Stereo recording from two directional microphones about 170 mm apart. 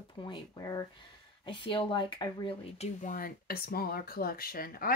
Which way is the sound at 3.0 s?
55° left (ahead or behind).